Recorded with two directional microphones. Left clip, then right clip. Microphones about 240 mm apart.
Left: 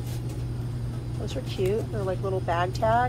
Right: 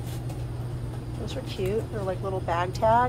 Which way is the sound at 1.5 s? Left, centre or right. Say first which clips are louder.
Left 2 dB; centre.